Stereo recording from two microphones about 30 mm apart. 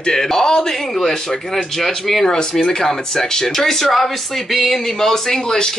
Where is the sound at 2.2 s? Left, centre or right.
Left.